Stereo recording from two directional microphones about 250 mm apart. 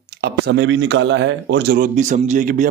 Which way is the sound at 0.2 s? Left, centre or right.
Right.